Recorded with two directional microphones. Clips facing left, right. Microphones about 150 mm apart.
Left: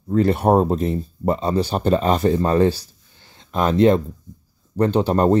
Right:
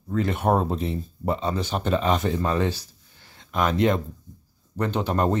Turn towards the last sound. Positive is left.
turn(degrees=35)  # may be behind; listen again after turning